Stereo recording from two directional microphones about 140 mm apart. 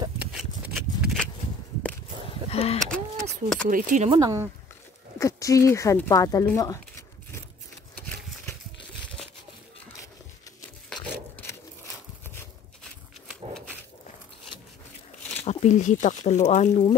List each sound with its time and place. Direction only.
0.3 s a sound: centre (ahead or behind)
2.5 s speech: 45° left (ahead or behind)
2.8 s a sound: 5° left (ahead or behind)
3.6 s speech: 60° right (ahead or behind)
4.2 s speech: 25° right (ahead or behind)
5.2 s speech: 20° left (ahead or behind)
6.6 s zipper: 25° left (ahead or behind)
11.3 s a sound: 20° left (ahead or behind)
13.5 s dog: 5° left (ahead or behind)
15.4 s speech: 55° left (ahead or behind)